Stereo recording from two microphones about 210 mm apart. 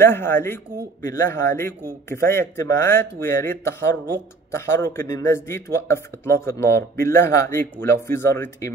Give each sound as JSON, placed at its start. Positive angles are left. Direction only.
{"t": 0.0, "sound": "speech", "side_deg": 10}